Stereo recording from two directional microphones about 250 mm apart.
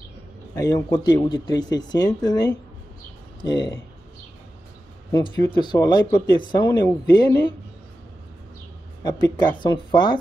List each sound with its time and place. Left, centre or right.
0.6 s speech: centre
5.1 s speech: centre
9.0 s speech: centre